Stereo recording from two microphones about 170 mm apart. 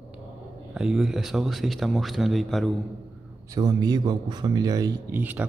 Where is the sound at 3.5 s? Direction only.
25° right (ahead or behind).